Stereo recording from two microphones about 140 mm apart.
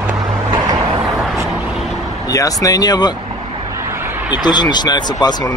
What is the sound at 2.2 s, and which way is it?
Speech, 25° left (ahead or behind).